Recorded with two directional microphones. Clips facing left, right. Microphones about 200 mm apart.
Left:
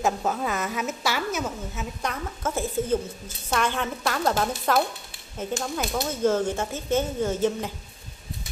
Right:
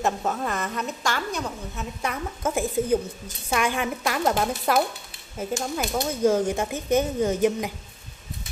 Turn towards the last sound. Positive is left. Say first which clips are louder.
# right 2 dB
turn(degrees=-10)  # may be behind; listen again after turning